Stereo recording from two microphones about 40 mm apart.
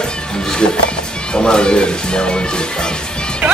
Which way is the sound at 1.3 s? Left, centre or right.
Left.